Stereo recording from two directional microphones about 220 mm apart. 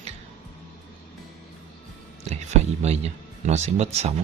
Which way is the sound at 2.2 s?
30° right (ahead or behind).